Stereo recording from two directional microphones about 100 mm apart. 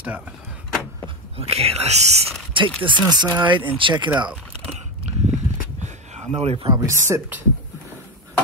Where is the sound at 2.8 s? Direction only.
50° right (ahead or behind).